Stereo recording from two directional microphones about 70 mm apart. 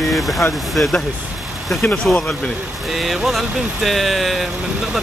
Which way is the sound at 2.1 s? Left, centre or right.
Centre.